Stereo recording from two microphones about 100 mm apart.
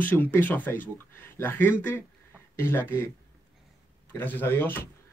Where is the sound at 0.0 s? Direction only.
15° left (ahead or behind).